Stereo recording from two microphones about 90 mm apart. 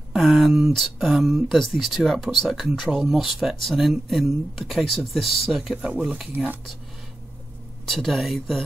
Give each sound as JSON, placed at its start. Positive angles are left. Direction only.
{"t": 0.1, "sound": "speech", "side_deg": -5}
{"t": 6.3, "sound": "speech", "side_deg": -20}
{"t": 7.8, "sound": "speech", "side_deg": 0}